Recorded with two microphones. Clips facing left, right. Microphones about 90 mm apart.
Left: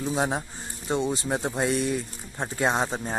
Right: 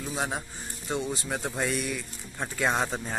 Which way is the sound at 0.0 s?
30° left (ahead or behind).